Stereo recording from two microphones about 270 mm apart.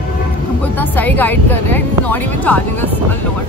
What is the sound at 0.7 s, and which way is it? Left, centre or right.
Speech, centre.